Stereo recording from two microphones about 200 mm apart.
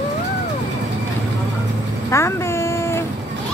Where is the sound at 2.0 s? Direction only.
15° left (ahead or behind).